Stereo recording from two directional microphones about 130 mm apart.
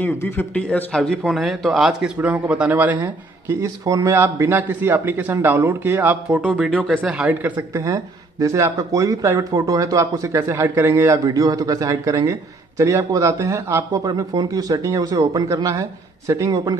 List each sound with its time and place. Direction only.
0.0 s a man's voice: 15° left (ahead or behind); by 3.0 s 15° right (ahead or behind)
3.4 s a man's voice: 25° right (ahead or behind)
6.7 s speech: 10° left (ahead or behind)
7.0 s a man's voice: 10° right (ahead or behind)
7.7 s speech: 25° right (ahead or behind)